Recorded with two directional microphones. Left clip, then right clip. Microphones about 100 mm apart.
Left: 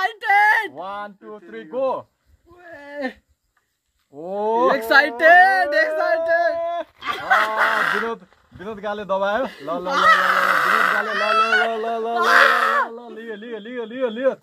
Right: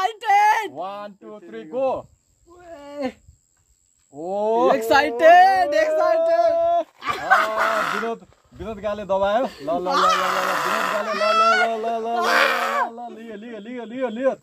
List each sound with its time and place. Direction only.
0.0 s a sound: 45° right (ahead or behind)
0.7 s speech: 30° left (ahead or behind)
2.7 s a sound: 30° right (ahead or behind)
4.2 s speech: 25° left (ahead or behind)
4.7 s speech: 45° right (ahead or behind)
6.6 s dog: 30° left (ahead or behind)
7.2 s speech: 30° right (ahead or behind)
8.1 s speech: 30° left (ahead or behind)
10.1 s speech: 40° right (ahead or behind)
11.1 s speech: 5° right (ahead or behind)
11.7 s fowl: 45° left (ahead or behind)
12.2 s a sound: 35° right (ahead or behind)
12.9 s speech: 40° left (ahead or behind)